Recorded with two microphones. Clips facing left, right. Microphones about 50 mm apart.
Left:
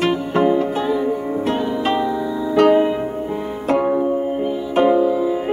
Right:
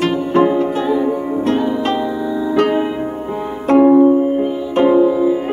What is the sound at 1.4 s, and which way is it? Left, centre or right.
Music, centre.